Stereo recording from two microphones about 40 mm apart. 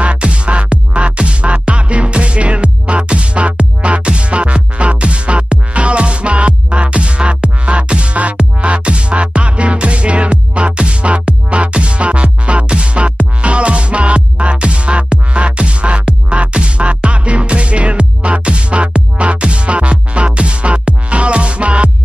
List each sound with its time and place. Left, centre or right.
0.0 s music: right